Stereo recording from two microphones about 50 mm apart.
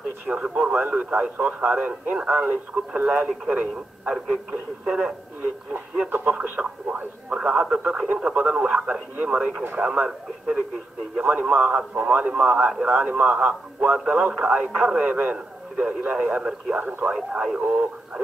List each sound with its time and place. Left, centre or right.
0.3 s speech: centre
2.3 s speech: right
2.7 s speech: right
6.3 s speech: right
11.9 s speech: right
15.0 s speech: right
15.3 s a man's voice: centre